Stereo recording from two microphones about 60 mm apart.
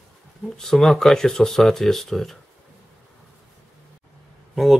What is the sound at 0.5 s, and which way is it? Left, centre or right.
Speech, centre.